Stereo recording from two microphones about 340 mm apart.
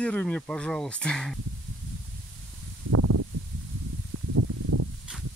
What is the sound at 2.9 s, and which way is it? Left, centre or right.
Snake, right.